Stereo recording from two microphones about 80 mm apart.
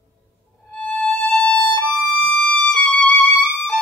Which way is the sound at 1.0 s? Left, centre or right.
Centre.